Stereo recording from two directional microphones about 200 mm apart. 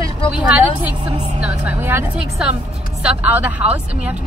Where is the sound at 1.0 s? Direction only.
25° right (ahead or behind).